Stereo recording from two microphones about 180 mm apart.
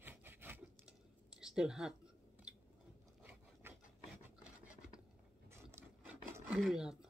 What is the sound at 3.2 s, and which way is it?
Wood, 10° right (ahead or behind).